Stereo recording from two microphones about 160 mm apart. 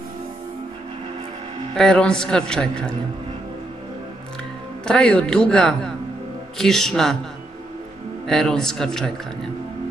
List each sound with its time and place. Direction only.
1.8 s a man's voice: 5° left (ahead or behind)
4.8 s a man's voice: 5° left (ahead or behind)
8.3 s a man's voice: centre (ahead or behind)